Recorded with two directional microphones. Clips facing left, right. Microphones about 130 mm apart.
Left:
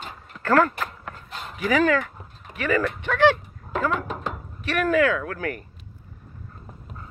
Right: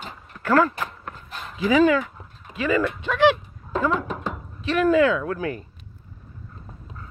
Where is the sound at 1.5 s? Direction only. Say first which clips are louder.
Right 3 dB; 15° right (ahead or behind).